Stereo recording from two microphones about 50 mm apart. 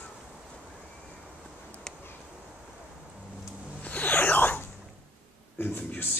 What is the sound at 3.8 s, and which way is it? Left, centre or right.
Zipper, left.